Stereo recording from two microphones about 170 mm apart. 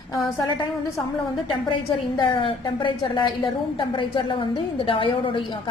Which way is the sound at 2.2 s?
30° left (ahead or behind).